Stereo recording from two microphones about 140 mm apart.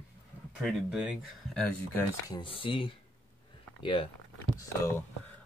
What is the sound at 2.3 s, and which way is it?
Speech, 35° left (ahead or behind).